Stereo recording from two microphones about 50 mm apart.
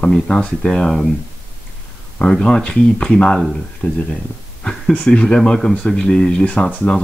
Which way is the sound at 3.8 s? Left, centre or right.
Left.